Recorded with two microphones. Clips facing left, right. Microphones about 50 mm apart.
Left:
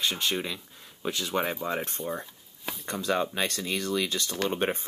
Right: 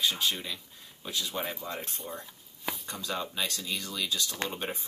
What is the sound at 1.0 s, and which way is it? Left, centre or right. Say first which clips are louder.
Speech: left 6 dB; left.